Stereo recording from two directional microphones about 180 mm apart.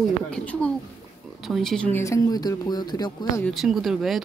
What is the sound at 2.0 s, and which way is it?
Speech, 20° left (ahead or behind).